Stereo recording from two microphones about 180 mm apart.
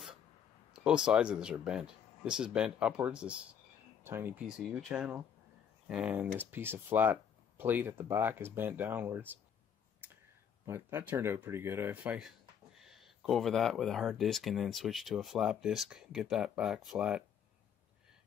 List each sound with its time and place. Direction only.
0.8 s speech: 5° right (ahead or behind)
10.7 s speech: 10° right (ahead or behind)